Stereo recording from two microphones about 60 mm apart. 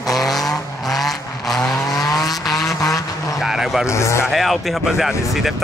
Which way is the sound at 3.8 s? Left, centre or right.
Left.